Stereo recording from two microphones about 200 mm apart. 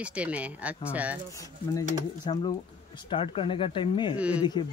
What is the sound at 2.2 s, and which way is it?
Speech, 25° left (ahead or behind).